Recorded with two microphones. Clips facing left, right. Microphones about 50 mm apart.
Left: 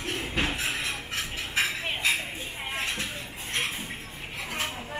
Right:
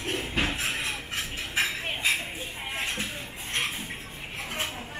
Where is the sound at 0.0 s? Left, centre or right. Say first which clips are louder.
Right 1 dB; centre.